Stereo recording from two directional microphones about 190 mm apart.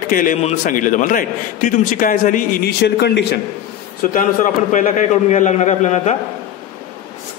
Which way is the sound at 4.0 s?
45° left (ahead or behind).